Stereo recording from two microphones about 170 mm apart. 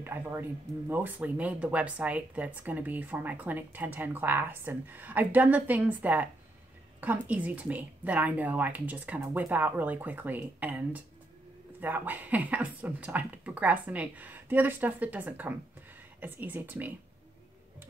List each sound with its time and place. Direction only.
0.0 s speech: 10° right (ahead or behind)